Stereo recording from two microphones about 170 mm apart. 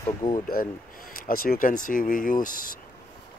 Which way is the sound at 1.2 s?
55° left (ahead or behind).